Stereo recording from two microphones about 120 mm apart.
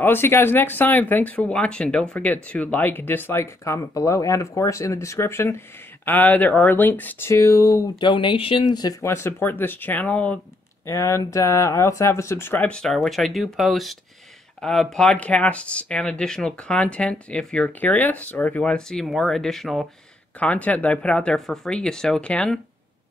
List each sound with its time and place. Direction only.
0.0 s speech: 20° left (ahead or behind)
8.0 s speech: 40° left (ahead or behind)
9.0 s speech: 20° left (ahead or behind)
10.9 s speech: 25° left (ahead or behind); by 19.9 s centre (ahead or behind)
20.3 s speech: 10° left (ahead or behind)